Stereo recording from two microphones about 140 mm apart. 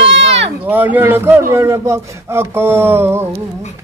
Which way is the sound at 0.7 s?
10° right (ahead or behind).